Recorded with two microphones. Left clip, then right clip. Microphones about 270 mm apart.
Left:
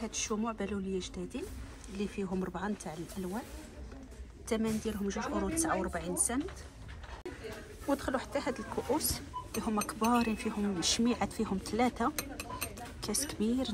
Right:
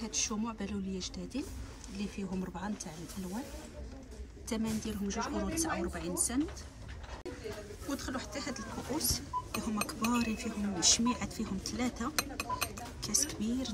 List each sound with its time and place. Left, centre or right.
0.0 s speech: centre
4.5 s speech: centre
7.9 s speech: centre